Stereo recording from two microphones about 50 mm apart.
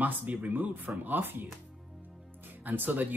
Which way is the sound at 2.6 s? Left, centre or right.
Right.